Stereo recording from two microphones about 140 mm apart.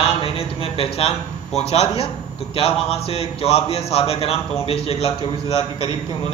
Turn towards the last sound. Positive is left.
turn(degrees=45)  # may be behind; listen again after turning